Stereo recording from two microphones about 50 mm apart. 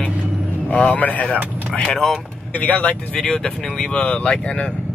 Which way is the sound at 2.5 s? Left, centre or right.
Left.